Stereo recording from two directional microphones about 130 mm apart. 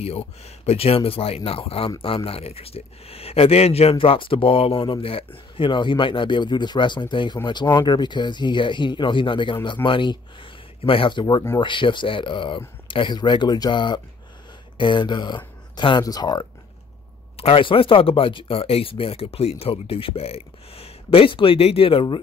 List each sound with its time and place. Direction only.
0.0 s speech: 50° left (ahead or behind)
3.9 s speech: 40° left (ahead or behind)
17.4 s speech: 45° left (ahead or behind)